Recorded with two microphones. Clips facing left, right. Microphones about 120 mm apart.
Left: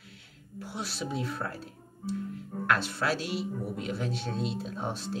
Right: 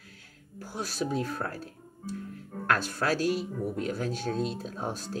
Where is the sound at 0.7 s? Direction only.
45° right (ahead or behind).